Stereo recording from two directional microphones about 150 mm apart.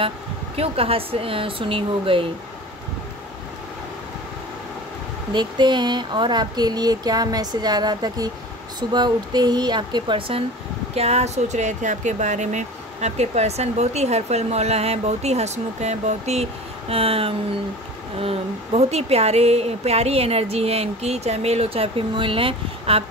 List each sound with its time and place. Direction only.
0.6 s speech: 40° right (ahead or behind)
5.3 s speech: 30° right (ahead or behind)